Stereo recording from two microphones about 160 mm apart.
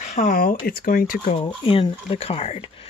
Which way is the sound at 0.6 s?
70° left (ahead or behind).